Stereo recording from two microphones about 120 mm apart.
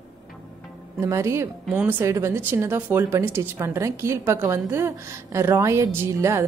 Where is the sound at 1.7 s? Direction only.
15° right (ahead or behind).